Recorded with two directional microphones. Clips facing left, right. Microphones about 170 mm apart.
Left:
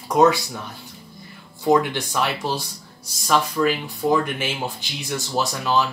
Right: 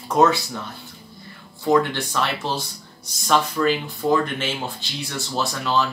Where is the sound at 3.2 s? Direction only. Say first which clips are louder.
Even; 5° left (ahead or behind).